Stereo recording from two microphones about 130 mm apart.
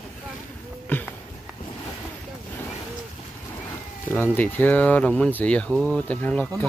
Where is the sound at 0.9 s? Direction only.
15° left (ahead or behind).